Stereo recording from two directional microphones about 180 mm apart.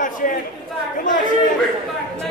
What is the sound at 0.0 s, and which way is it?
Chatter, 50° left (ahead or behind).